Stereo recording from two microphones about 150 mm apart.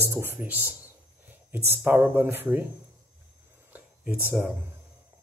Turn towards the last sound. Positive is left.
turn(degrees=-5)  # may be behind; listen again after turning